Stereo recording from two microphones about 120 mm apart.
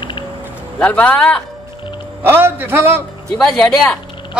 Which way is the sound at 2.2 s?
20° right (ahead or behind).